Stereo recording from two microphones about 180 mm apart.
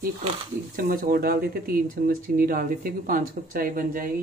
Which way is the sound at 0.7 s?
50° right (ahead or behind).